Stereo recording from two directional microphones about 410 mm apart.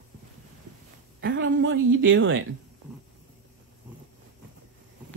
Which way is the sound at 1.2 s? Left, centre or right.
Right.